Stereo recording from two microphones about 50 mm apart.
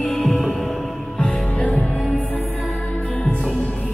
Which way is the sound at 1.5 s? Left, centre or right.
Left.